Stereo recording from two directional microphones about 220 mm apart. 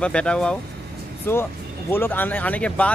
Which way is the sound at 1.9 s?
10° left (ahead or behind).